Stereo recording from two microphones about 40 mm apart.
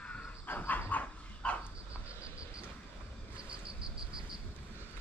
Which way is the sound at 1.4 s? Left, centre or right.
Left.